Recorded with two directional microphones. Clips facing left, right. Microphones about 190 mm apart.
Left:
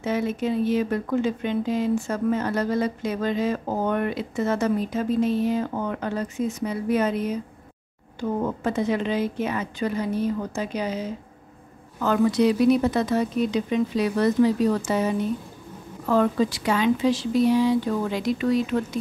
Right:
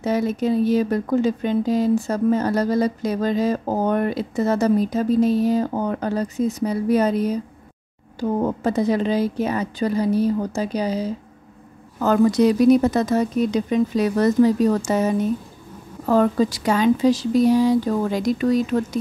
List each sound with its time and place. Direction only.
0.0 s speech: 40° right (ahead or behind)